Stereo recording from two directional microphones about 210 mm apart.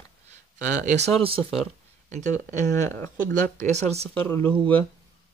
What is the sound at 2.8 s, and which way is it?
Speech, 10° left (ahead or behind).